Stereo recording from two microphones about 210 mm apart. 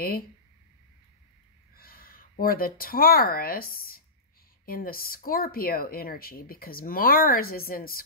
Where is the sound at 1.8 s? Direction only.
45° left (ahead or behind).